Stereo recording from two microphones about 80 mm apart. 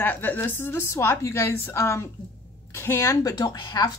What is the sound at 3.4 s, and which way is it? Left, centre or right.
Speech, left.